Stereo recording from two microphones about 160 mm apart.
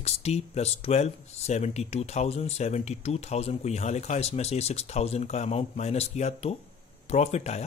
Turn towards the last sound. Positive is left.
turn(degrees=45)  # may be behind; listen again after turning